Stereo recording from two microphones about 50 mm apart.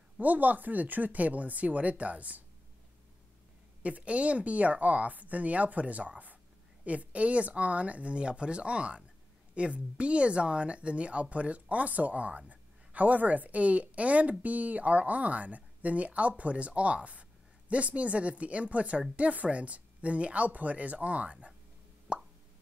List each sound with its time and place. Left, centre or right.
0.2 s speech: right
3.8 s speech: right
22.1 s plop: right